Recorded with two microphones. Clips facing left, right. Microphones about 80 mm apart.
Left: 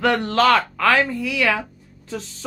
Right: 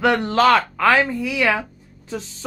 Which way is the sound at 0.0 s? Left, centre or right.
Centre.